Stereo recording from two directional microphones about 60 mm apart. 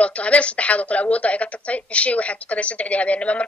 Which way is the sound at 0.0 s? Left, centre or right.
Left.